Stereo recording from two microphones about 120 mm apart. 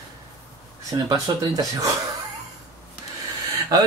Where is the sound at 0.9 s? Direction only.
30° right (ahead or behind).